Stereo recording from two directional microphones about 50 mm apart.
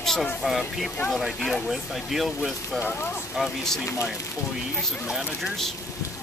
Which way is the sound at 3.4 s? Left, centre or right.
Centre.